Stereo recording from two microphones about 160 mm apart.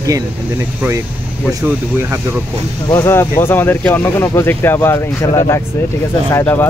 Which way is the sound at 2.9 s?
15° left (ahead or behind).